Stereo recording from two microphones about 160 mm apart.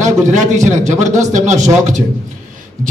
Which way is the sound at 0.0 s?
50° right (ahead or behind).